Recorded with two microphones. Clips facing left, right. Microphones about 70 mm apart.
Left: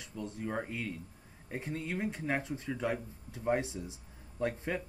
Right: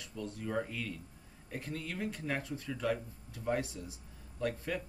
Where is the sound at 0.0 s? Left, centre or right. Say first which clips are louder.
Left 1 dB; left.